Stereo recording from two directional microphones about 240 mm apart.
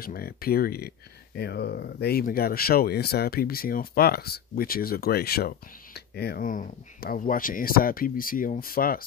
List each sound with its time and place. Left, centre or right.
0.0 s speech: left